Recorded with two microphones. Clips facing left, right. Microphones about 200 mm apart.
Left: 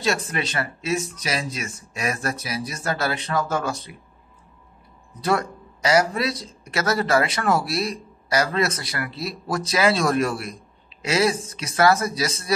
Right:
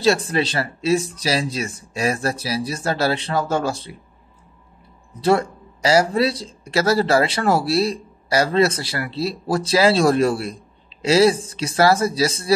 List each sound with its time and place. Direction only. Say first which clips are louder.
0.0 s speech: right 7 dB; 30° right (ahead or behind)
5.2 s speech: right 5 dB; 30° right (ahead or behind)